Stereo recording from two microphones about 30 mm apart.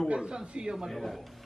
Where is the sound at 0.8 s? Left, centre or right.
Centre.